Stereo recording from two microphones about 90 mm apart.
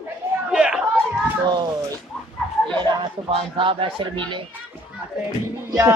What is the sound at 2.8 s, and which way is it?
A man's voice, 65° right (ahead or behind).